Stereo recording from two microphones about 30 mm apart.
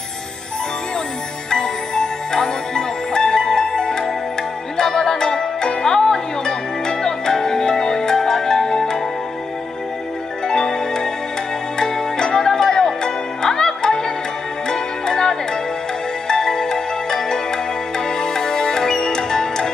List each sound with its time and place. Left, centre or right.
1.5 s music: left
5.9 s music: centre
10.4 s music: left